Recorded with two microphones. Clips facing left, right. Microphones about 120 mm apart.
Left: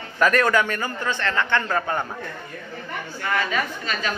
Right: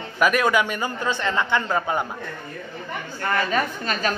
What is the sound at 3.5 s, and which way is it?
Speech, 40° right (ahead or behind).